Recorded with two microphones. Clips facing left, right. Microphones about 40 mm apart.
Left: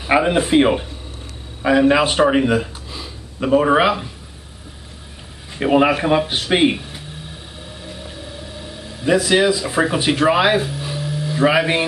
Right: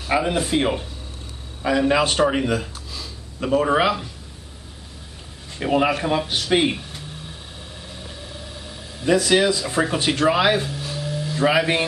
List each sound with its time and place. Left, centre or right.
0.0 s speech: left
5.5 s speech: centre
7.8 s a sound: centre